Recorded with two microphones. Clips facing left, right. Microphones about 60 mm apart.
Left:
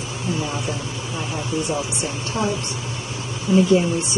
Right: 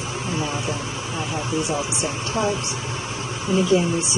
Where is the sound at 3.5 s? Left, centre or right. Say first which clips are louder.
Left 3 dB; left.